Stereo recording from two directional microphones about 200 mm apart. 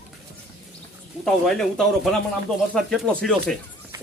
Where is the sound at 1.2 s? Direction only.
Centre (ahead or behind).